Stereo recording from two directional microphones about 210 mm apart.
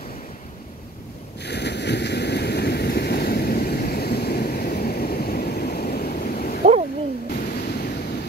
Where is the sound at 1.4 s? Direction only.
55° left (ahead or behind).